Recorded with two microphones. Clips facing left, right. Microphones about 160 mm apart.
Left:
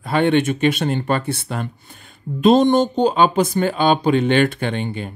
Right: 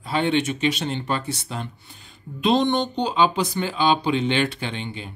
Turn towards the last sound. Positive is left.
turn(degrees=55)  # may be behind; listen again after turning